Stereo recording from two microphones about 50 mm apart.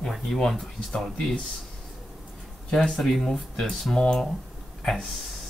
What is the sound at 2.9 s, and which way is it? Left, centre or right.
Speech, centre.